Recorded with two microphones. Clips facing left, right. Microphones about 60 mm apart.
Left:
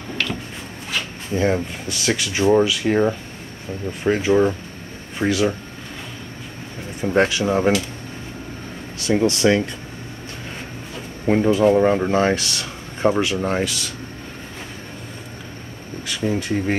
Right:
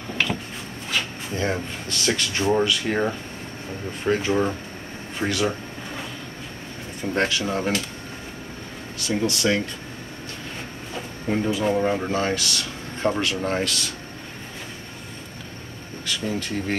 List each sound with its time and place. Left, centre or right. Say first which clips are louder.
0.9 s speech: left 3 dB; centre
7.0 s speech: left 5 dB; centre
9.0 s speech: left 6 dB; left
11.2 s speech: left 7 dB; left
11.7 s speech: left 6 dB; left; by 13.9 s centre
16.1 s speech: left 5 dB; centre